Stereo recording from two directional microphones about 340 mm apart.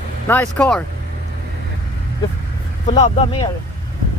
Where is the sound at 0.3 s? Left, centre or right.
Centre.